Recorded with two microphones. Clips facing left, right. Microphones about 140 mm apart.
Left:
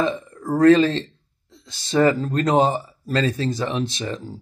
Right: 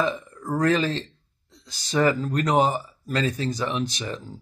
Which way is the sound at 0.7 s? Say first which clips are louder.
Left 10 dB; 25° left (ahead or behind).